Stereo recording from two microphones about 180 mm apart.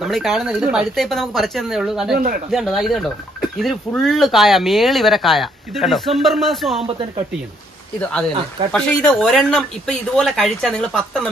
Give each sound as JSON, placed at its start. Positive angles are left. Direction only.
{"t": 0.0, "sound": "speech", "side_deg": 0}
{"t": 2.1, "sound": "speech", "side_deg": -50}
{"t": 2.5, "sound": "speech", "side_deg": 0}
{"t": 8.0, "sound": "speech", "side_deg": 5}